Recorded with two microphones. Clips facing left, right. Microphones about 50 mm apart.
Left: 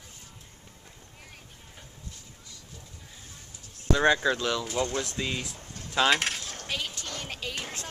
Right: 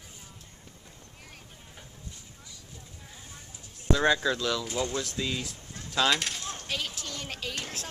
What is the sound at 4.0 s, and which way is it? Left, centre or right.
Speech, centre.